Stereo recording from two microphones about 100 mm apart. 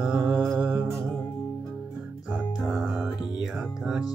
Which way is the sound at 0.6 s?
15° right (ahead or behind).